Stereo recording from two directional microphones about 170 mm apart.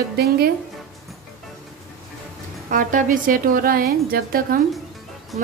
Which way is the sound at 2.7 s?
50° right (ahead or behind).